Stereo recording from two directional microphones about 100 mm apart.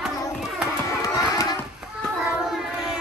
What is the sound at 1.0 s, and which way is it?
Music, 35° left (ahead or behind).